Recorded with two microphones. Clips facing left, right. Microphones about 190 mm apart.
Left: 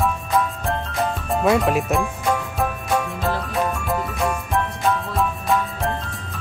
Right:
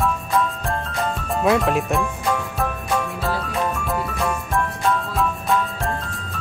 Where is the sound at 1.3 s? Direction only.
Centre (ahead or behind).